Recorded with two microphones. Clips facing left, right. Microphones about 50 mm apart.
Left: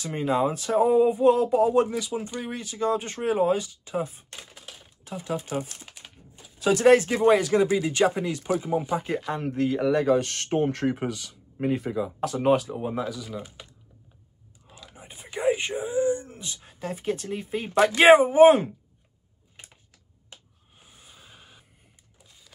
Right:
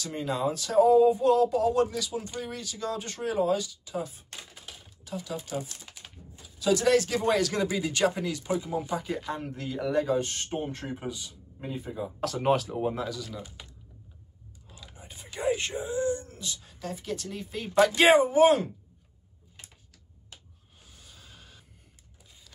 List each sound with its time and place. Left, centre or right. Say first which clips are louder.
0.0 s speech: left 5 dB; left
9.3 s speech: left 8 dB; left
12.2 s speech: left 3 dB; centre
15.0 s speech: left 4 dB; left
20.8 s a sound: left 2 dB; left